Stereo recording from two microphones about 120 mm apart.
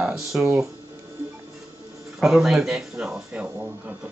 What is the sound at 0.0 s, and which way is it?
Speech, 5° right (ahead or behind).